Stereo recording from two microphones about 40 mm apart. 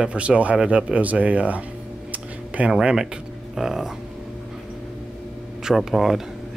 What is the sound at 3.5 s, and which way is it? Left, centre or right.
Speech, centre.